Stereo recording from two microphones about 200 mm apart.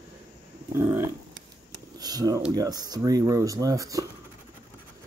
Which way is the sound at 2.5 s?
20° right (ahead or behind).